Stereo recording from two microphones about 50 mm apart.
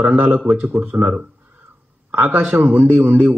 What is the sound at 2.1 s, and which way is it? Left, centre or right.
A man's voice, right.